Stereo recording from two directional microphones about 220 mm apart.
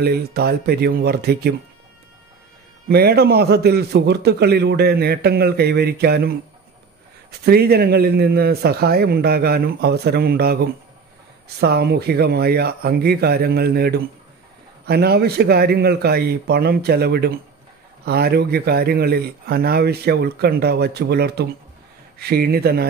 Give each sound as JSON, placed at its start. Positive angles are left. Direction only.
{"t": 0.0, "sound": "a man's voice", "side_deg": -45}
{"t": 2.9, "sound": "a man's voice", "side_deg": -45}